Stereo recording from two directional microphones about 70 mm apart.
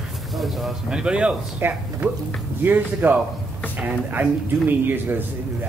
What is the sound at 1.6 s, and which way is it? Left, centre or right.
Speech, right.